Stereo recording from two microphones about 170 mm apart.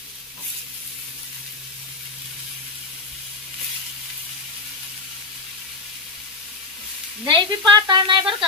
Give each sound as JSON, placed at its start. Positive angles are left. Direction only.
{"t": 7.2, "sound": "a woman's voice", "side_deg": -25}